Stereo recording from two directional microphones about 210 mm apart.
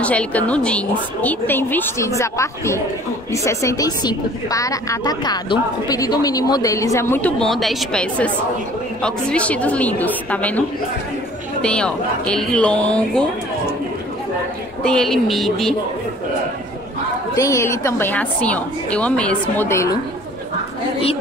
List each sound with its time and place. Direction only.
0.0 s a woman's voice: 5° left (ahead or behind)
11.6 s speech: 5° left (ahead or behind)
14.8 s speech: 5° left (ahead or behind)
17.4 s a woman's voice: 15° left (ahead or behind)